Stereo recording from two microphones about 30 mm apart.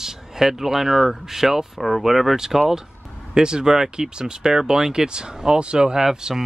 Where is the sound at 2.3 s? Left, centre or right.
Centre.